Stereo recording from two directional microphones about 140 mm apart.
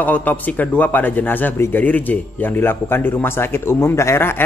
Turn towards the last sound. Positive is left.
turn(degrees=20)  # may be behind; listen again after turning